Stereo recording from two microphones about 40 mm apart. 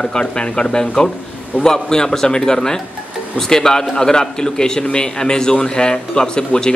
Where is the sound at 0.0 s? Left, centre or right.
Left.